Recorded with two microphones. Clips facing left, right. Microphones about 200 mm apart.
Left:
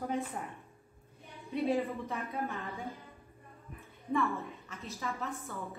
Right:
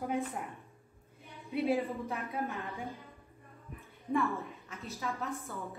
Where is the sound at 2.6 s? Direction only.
15° right (ahead or behind).